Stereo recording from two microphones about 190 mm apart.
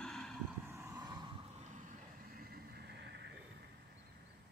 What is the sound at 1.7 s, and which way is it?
Vehicle, 45° right (ahead or behind).